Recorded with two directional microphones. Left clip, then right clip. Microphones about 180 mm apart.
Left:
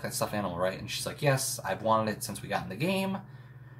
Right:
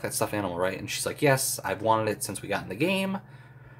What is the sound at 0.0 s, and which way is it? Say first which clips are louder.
Speech: right 3 dB; 45° right (ahead or behind).